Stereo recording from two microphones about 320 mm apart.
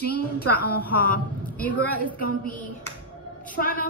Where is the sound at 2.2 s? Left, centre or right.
Left.